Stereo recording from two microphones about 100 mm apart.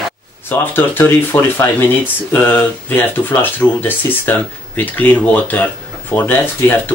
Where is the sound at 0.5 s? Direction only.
20° left (ahead or behind).